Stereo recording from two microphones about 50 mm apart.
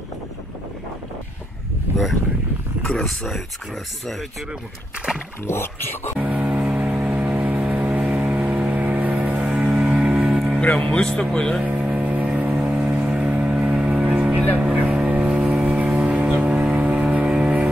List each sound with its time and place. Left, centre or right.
2.8 s speech: centre
5.4 s speech: left
6.1 s vehicle: right
9.5 s music: centre
10.6 s speech: left
10.9 s speech: centre
11.6 s vehicle: right
12.0 s music: right
12.4 s vehicle: right
12.7 s music: right
14.8 s vehicle: right